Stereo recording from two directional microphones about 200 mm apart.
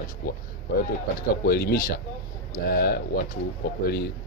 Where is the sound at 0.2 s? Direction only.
50° left (ahead or behind).